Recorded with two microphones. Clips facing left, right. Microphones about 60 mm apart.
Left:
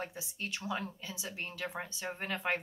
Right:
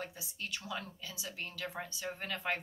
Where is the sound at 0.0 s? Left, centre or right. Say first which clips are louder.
Left 3 dB; left.